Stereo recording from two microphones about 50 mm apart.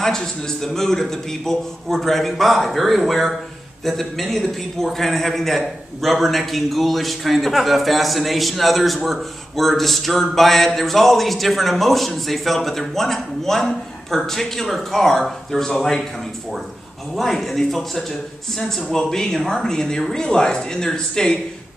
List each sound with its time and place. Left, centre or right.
0.0 s a man's voice: centre
17.1 s a man's voice: centre